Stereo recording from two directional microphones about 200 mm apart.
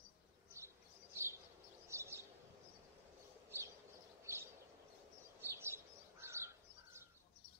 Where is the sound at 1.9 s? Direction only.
15° right (ahead or behind).